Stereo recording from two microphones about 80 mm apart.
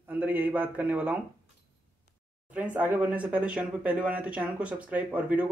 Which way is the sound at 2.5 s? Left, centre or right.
Centre.